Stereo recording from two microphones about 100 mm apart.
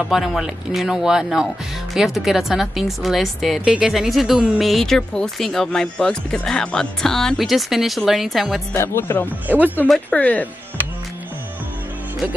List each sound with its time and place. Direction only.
0.0 s speech: centre (ahead or behind)
8.7 s speech: 25° left (ahead or behind)